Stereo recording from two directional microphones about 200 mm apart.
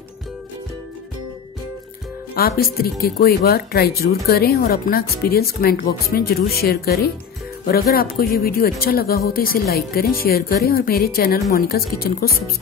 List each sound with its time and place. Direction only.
2.3 s speech: 50° left (ahead or behind)